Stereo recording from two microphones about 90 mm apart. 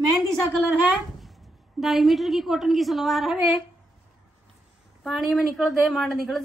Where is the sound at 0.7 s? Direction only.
15° right (ahead or behind).